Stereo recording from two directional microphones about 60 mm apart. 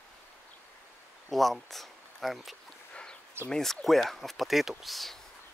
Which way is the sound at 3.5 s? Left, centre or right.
Centre.